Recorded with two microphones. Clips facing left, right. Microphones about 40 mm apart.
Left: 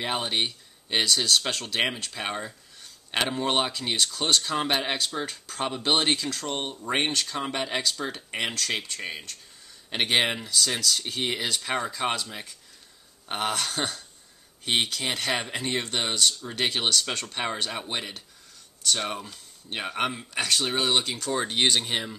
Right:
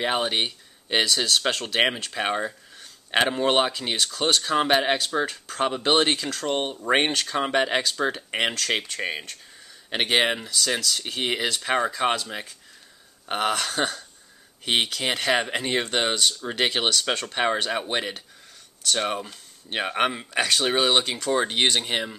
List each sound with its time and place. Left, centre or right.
0.0 s speech: centre
3.3 s speech: centre
13.5 s speech: centre
14.6 s speech: right
17.6 s speech: right
21.5 s speech: centre